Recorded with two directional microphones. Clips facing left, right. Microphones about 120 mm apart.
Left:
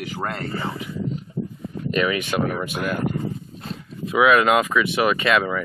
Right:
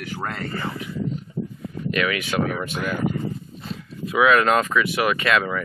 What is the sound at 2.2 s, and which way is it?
Speech, centre (ahead or behind).